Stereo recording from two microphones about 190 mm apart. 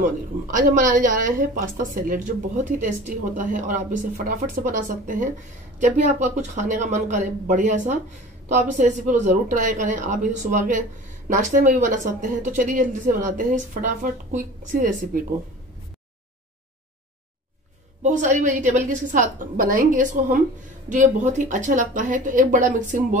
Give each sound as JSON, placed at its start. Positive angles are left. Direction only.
{"t": 0.0, "sound": "a woman's voice", "side_deg": -45}
{"t": 18.0, "sound": "a woman's voice", "side_deg": -40}